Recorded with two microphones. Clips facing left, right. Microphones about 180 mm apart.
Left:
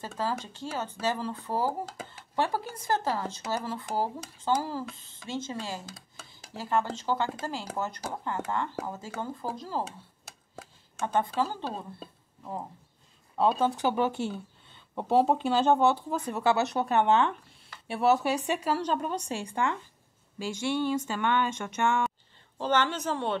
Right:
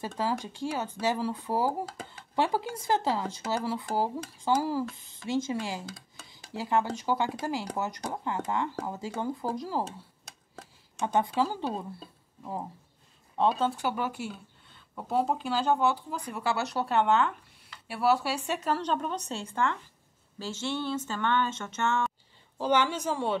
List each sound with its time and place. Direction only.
0.2 s speech: 15° right (ahead or behind)
11.0 s speech: 15° right (ahead or behind)
13.4 s speech: 5° left (ahead or behind)
13.7 s speech: 20° left (ahead or behind)
22.6 s speech: 10° right (ahead or behind)